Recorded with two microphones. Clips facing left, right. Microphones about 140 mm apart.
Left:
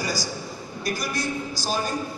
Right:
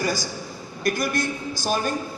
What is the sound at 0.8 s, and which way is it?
Speech, 55° right (ahead or behind).